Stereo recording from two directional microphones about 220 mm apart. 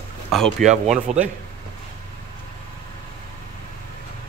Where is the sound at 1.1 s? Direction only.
30° right (ahead or behind).